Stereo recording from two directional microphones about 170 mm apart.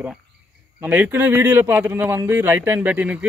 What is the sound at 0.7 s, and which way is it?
A man's voice, 10° right (ahead or behind).